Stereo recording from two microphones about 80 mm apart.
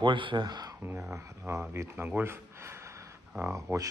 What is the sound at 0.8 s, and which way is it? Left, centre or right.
Speech, right.